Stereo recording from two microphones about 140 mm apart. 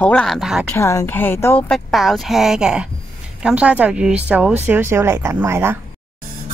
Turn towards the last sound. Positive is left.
turn(degrees=-15)  # may be behind; listen again after turning